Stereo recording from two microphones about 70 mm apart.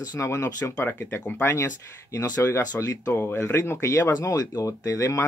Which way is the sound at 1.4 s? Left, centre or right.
Left.